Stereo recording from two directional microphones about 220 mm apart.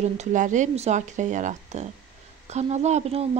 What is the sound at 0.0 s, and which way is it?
Speech, 35° right (ahead or behind).